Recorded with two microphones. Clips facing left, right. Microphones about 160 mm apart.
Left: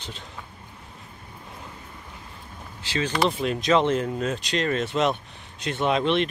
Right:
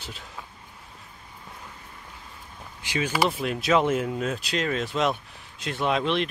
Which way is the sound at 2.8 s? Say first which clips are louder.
Left 1 dB; 10° right (ahead or behind).